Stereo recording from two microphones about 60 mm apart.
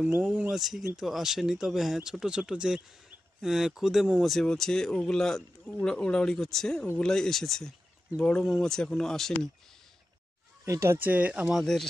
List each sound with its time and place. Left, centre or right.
0.5 s speech: centre
10.6 s speech: right
11.0 s speech: right
11.6 s speech: centre